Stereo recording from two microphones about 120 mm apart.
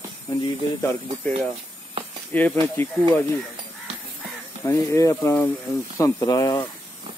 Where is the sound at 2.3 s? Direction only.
15° left (ahead or behind).